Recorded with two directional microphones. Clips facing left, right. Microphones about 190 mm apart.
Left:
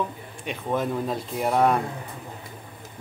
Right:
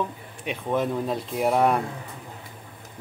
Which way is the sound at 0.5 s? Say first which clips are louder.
Right 1 dB; centre (ahead or behind).